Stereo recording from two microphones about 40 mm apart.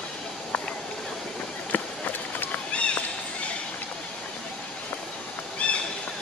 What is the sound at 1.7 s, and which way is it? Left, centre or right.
Run, left.